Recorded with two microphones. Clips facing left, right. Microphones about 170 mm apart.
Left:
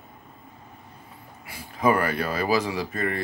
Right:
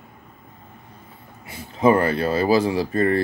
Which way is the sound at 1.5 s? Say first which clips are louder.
Right 5 dB; 25° right (ahead or behind).